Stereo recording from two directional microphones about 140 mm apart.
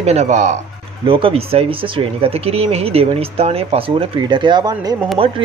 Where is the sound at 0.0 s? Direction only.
50° right (ahead or behind).